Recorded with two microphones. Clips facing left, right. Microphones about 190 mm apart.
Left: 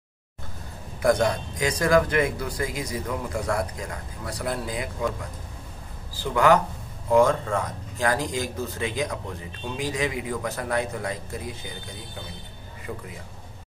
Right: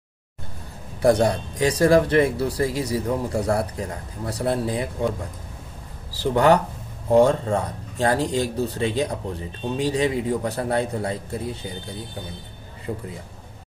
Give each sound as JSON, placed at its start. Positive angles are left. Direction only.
{"t": 1.0, "sound": "speech", "side_deg": -35}
{"t": 6.2, "sound": "speech", "side_deg": -35}
{"t": 12.9, "sound": "speech", "side_deg": -25}